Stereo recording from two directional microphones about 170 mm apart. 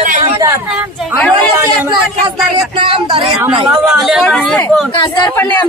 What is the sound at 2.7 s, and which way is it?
Speech, 30° right (ahead or behind).